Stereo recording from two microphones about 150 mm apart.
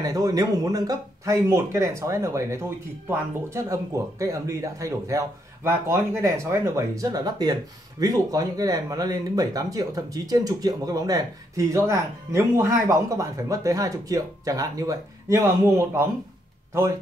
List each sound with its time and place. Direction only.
0.0 s speech: 25° right (ahead or behind)